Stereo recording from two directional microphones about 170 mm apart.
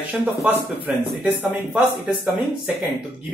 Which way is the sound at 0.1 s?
10° right (ahead or behind).